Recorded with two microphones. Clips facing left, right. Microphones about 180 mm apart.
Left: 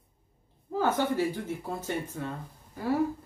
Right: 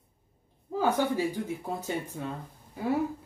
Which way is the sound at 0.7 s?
15° right (ahead or behind).